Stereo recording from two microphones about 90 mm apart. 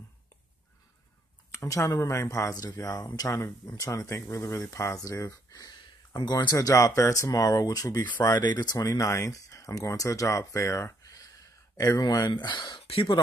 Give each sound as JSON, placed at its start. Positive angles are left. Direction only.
{"t": 1.5, "sound": "speech", "side_deg": 35}
{"t": 3.3, "sound": "speech", "side_deg": 30}
{"t": 3.6, "sound": "speech", "side_deg": 40}
{"t": 6.1, "sound": "speech", "side_deg": 50}
{"t": 8.0, "sound": "speech", "side_deg": 50}
{"t": 8.7, "sound": "speech", "side_deg": 40}